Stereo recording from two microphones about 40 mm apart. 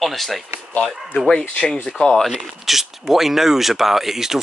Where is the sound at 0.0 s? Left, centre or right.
Centre.